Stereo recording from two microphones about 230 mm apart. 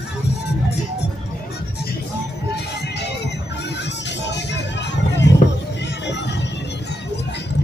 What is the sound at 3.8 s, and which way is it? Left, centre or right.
Music, left.